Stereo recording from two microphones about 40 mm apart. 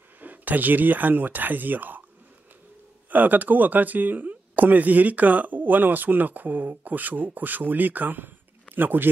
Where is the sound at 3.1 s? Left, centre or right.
Right.